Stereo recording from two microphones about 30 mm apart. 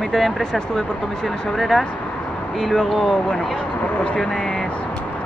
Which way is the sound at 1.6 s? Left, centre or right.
Centre.